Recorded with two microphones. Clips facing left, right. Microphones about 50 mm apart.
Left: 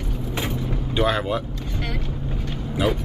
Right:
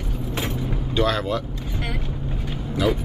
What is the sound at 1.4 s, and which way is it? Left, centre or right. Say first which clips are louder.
Vehicle: even; centre.